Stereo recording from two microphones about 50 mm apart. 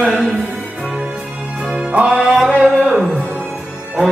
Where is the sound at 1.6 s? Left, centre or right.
Centre.